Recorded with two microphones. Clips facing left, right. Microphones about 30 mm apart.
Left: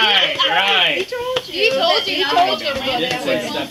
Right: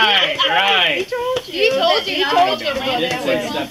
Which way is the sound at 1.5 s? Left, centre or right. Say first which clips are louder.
Even; centre.